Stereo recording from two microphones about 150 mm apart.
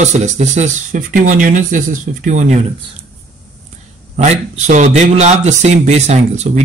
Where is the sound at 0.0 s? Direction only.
50° right (ahead or behind).